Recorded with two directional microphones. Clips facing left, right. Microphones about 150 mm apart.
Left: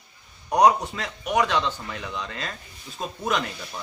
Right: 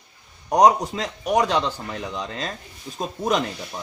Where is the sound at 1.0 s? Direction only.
35° right (ahead or behind).